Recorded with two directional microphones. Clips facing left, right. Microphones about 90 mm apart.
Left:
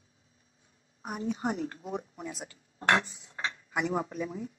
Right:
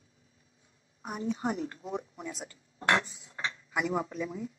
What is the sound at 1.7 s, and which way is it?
Speech, 35° left (ahead or behind).